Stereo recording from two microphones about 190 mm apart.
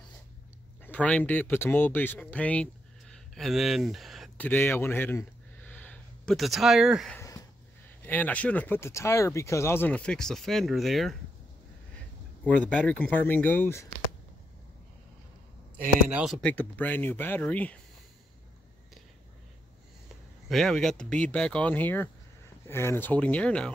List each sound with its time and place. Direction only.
0.8 s speech: 5° left (ahead or behind)
4.5 s speech: 10° left (ahead or behind)
5.7 s a sound: 10° left (ahead or behind)
7.2 s a sound: 20° left (ahead or behind)
8.0 s speech: 10° left (ahead or behind)
12.4 s speech: 5° left (ahead or behind)
16.1 s speech: 5° right (ahead or behind)
16.4 s speech: 10° left (ahead or behind)
20.4 s speech: centre (ahead or behind)